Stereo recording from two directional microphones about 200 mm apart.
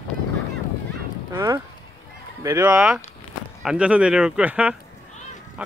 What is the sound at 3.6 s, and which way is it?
Speech, 5° right (ahead or behind).